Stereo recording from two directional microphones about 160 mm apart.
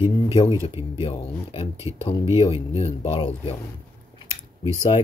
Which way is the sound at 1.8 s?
20° right (ahead or behind).